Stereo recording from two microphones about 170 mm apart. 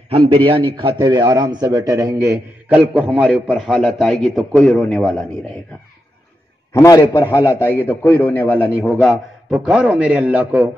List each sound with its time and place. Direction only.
0.1 s a man's voice: 30° right (ahead or behind); by 5.2 s centre (ahead or behind)
6.7 s a man's voice: 20° left (ahead or behind)
9.0 s a man's voice: centre (ahead or behind)